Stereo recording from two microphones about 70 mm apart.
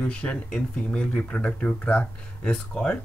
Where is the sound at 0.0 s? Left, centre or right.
Centre.